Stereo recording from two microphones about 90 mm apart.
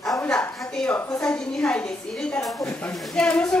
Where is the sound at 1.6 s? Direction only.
10° left (ahead or behind).